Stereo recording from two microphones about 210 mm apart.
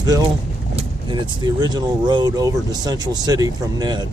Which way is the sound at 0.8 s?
20° right (ahead or behind).